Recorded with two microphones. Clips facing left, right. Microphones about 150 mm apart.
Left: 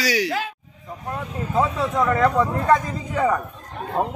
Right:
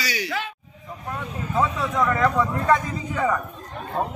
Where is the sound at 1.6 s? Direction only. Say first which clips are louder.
Left 2 dB; 30° left (ahead or behind).